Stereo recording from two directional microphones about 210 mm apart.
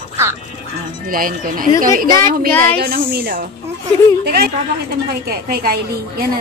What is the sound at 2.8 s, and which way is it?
A woman's voice, 45° right (ahead or behind).